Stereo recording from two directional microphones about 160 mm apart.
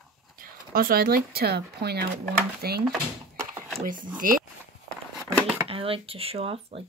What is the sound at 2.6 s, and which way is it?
Speech, 75° right (ahead or behind).